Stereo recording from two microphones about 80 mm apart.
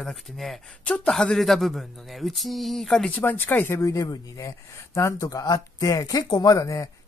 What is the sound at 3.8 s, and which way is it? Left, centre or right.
Speech, left.